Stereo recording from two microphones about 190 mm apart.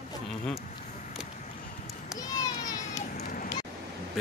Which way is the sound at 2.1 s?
20° left (ahead or behind).